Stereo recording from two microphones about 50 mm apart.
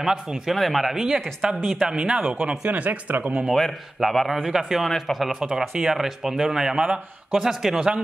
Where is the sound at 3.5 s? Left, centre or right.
Centre.